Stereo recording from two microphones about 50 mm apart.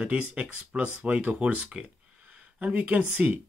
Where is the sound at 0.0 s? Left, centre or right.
Right.